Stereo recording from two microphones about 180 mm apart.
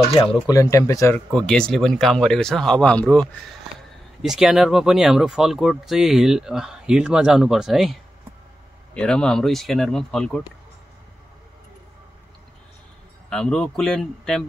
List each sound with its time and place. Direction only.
0.2 s speech: 30° left (ahead or behind)
0.6 s speech: 15° left (ahead or behind)
13.3 s speech: 5° left (ahead or behind)